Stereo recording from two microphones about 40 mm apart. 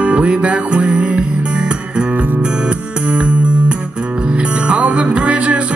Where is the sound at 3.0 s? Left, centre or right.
Right.